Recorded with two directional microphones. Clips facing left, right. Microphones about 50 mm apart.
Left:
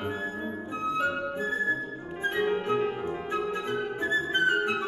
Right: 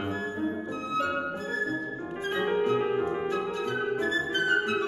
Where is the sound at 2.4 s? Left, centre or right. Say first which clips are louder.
Right 1 dB; centre.